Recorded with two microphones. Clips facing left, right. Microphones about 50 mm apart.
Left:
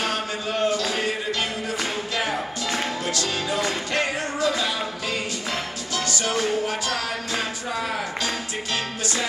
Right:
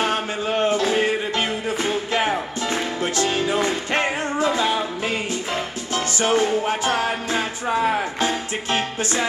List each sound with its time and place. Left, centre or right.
0.0 s music: right
5.9 s music: right